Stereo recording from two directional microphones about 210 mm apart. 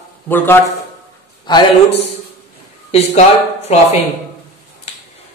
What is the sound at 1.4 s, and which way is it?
Speech, 25° left (ahead or behind).